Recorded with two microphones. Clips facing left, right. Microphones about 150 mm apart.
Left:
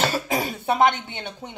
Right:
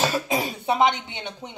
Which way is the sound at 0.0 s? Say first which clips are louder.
Even; 20° right (ahead or behind).